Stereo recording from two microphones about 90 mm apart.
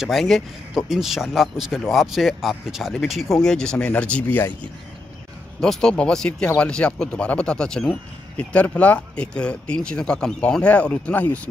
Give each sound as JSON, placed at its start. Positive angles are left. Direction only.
{"t": 0.0, "sound": "speech", "side_deg": 0}
{"t": 5.6, "sound": "speech", "side_deg": 5}